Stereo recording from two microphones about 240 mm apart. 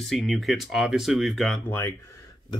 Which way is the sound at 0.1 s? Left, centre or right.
Centre.